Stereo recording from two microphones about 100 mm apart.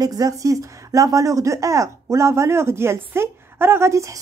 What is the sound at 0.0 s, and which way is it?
Speech, 40° right (ahead or behind).